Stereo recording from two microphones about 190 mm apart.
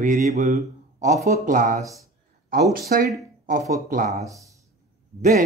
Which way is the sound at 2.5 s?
55° right (ahead or behind).